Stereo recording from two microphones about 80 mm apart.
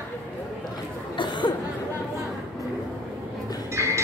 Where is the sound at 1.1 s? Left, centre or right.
Left.